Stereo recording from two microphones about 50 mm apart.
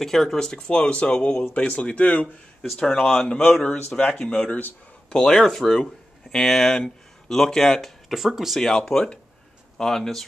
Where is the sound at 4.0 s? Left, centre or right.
Left.